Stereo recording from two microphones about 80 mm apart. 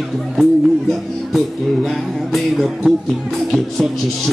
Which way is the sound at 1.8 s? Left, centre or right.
Centre.